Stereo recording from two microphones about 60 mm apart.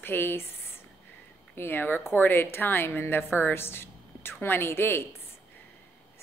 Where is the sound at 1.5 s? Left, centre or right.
Left.